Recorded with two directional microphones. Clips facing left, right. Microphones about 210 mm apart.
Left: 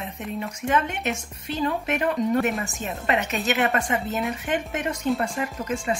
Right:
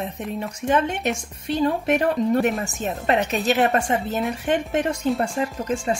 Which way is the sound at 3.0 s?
35° right (ahead or behind).